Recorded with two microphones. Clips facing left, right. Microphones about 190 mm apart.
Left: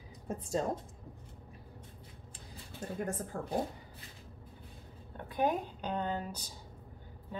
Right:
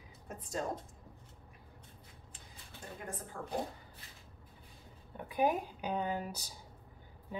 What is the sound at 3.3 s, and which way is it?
Speech, 35° left (ahead or behind).